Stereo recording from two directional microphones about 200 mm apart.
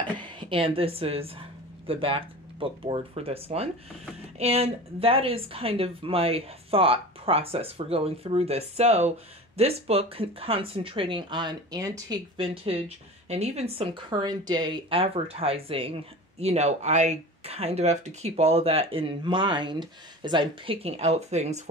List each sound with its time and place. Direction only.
0.0 s speech: 25° right (ahead or behind)